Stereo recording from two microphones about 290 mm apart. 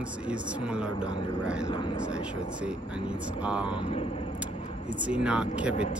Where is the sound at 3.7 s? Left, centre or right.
Centre.